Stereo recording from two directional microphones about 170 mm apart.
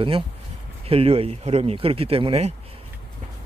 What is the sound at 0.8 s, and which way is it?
Speech, 35° right (ahead or behind).